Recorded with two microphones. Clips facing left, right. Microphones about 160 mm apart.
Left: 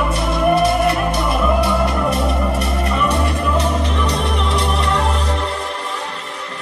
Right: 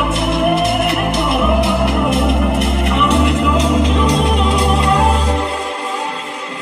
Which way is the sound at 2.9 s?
85° right.